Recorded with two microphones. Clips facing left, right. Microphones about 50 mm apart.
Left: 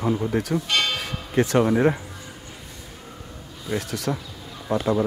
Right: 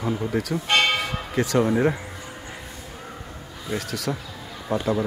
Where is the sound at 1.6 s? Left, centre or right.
Centre.